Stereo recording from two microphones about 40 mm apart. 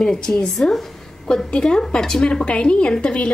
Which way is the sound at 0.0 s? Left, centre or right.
Centre.